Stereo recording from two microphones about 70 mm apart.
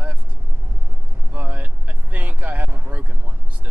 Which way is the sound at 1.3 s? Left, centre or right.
Right.